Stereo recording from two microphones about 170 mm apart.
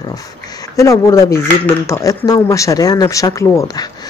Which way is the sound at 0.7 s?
20° left (ahead or behind).